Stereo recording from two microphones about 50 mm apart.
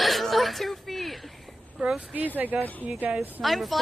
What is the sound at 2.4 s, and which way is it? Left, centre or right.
Speech, right.